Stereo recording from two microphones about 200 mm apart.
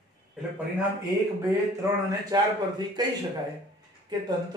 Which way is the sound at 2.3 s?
20° right (ahead or behind).